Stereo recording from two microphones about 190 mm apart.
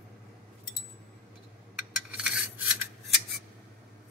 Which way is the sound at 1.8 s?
5° right (ahead or behind).